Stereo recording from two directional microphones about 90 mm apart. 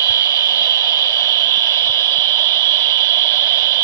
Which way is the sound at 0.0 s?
35° left (ahead or behind).